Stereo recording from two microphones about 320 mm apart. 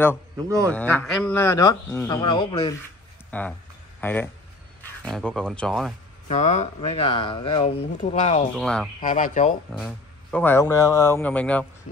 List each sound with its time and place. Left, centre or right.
0.7 s speech: centre
6.2 s speech: left
8.5 s speech: centre
9.0 s speech: left
9.8 s speech: centre